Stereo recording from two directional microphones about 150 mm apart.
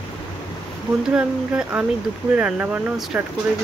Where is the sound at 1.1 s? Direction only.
10° right (ahead or behind).